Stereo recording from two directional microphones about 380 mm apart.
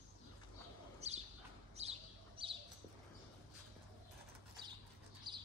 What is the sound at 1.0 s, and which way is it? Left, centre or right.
Bird, centre.